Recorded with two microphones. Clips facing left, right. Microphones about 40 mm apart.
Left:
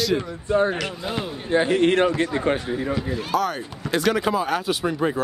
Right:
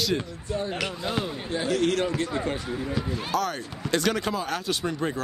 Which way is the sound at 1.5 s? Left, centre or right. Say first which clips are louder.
Left 7 dB; left.